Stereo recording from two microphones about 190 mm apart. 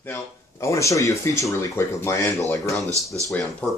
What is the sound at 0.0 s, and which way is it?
Speech, 15° left (ahead or behind).